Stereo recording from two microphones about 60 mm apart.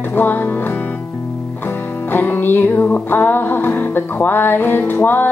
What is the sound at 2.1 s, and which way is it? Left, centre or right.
Music, left.